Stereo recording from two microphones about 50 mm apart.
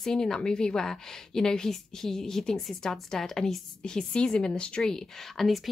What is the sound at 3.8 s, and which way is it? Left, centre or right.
A woman's voice, centre.